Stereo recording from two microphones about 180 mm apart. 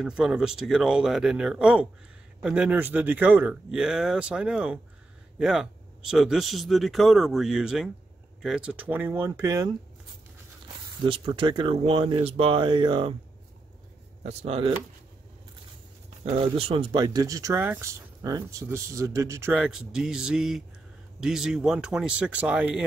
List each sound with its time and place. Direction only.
0.0 s speech: 5° right (ahead or behind)
11.1 s speech: 30° right (ahead or behind)
14.2 s speech: 35° right (ahead or behind)
16.5 s speech: 30° right (ahead or behind)
19.5 s speech: 5° right (ahead or behind)